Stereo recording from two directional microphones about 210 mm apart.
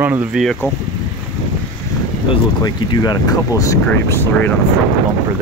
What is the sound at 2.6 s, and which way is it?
Speech, 20° left (ahead or behind).